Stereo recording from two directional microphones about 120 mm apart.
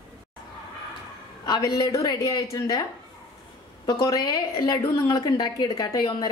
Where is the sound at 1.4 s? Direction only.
35° left (ahead or behind).